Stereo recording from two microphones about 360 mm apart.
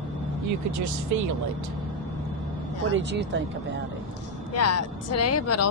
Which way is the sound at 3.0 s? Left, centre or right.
Right.